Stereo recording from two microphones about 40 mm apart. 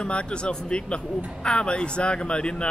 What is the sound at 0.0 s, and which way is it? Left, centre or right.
Speech, left.